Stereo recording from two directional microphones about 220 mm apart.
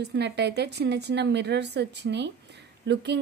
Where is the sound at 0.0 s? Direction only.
50° right (ahead or behind).